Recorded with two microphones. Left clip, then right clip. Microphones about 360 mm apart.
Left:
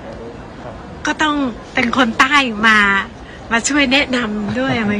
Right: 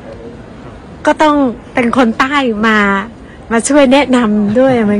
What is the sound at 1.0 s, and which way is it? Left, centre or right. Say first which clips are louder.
A woman's voice: right 8 dB; centre.